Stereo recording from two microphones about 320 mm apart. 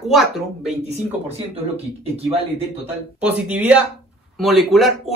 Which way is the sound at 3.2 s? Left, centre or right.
Centre.